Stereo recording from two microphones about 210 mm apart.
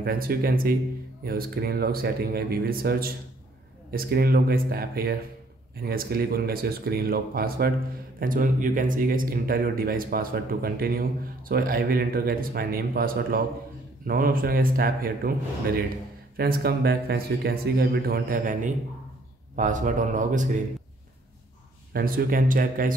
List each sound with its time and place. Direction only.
0.0 s speech: 45° right (ahead or behind)
21.9 s speech: 45° right (ahead or behind)